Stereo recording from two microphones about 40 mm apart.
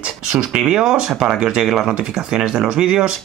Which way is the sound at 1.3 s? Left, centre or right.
Centre.